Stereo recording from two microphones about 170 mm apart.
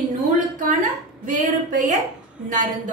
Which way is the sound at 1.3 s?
50° right (ahead or behind).